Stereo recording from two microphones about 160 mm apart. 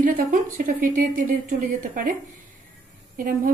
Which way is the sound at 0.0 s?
55° right (ahead or behind).